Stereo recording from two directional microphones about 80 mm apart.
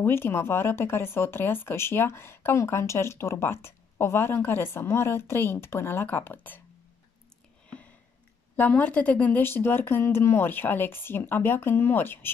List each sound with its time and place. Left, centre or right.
0.0 s speech: left
8.5 s speech: centre